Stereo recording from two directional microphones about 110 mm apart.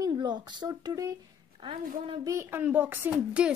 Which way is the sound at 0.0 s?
40° right (ahead or behind).